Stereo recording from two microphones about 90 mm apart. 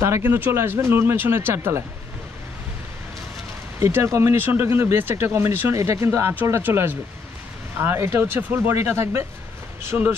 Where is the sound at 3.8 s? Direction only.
30° right (ahead or behind).